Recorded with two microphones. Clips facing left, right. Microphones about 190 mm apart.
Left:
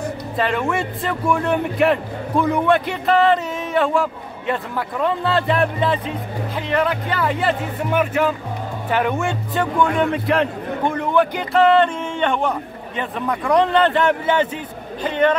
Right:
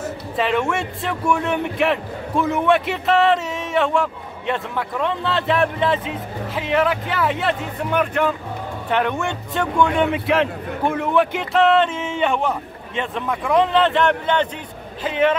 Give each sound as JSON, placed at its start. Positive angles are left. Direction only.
{"t": 0.4, "sound": "a man's voice", "side_deg": 0}
{"t": 15.0, "sound": "a man's voice", "side_deg": -5}